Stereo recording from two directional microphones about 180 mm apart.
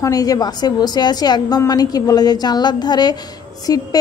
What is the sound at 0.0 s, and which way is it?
A woman's voice, 20° left (ahead or behind).